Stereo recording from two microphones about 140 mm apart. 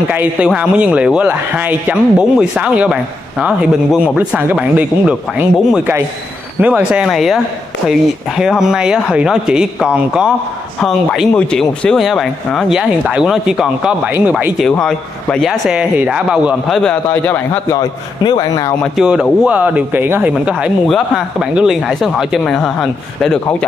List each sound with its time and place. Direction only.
0.1 s speech: 15° right (ahead or behind)
8.4 s speech: 5° right (ahead or behind)
14.7 s speech: 5° left (ahead or behind)
16.9 s a man's voice: 15° left (ahead or behind)
17.7 s a man's voice: 30° left (ahead or behind)
18.8 s speech: 5° right (ahead or behind)